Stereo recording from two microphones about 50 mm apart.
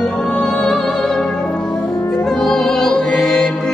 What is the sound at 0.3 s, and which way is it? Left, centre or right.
Music, centre.